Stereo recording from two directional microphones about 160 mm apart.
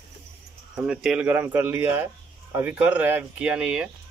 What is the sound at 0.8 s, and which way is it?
Speech, 5° right (ahead or behind).